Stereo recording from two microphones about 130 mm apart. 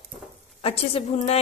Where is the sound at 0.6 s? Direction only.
50° left (ahead or behind).